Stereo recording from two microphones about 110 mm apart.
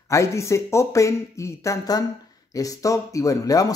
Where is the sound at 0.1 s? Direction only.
25° left (ahead or behind).